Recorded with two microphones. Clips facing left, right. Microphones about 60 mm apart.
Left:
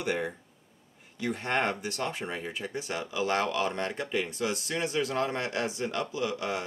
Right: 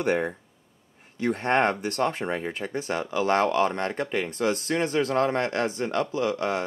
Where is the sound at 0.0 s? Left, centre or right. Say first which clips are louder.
Right 6 dB; right.